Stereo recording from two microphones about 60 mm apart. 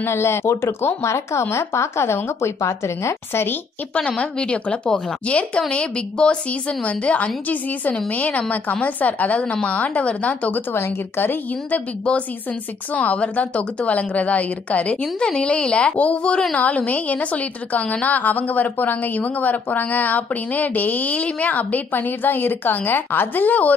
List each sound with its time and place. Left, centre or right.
0.0 s speech: left
4.2 s a woman's voice: centre
10.7 s a woman's voice: left
11.7 s a woman's voice: centre